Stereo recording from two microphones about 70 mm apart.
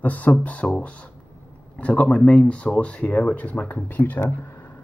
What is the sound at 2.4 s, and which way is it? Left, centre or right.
Speech, centre.